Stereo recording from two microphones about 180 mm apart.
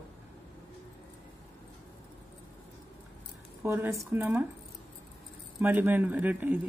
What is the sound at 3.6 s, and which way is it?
Speech, 15° right (ahead or behind).